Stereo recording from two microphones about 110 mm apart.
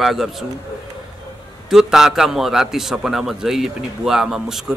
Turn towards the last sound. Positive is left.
turn(degrees=-5)  # may be behind; listen again after turning